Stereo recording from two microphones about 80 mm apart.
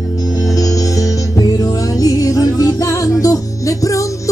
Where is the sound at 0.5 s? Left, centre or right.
Left.